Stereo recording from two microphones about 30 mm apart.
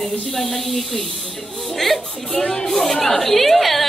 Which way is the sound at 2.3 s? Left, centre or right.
Centre.